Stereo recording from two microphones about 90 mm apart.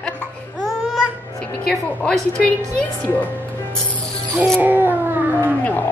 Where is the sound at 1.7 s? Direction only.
10° left (ahead or behind).